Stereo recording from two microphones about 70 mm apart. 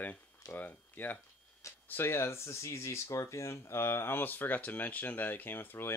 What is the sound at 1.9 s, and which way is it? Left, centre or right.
Speech, left.